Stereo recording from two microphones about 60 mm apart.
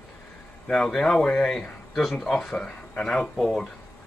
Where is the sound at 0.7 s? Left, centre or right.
Centre.